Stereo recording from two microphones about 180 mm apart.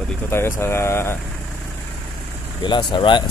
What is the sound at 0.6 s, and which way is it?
Speech, 15° left (ahead or behind).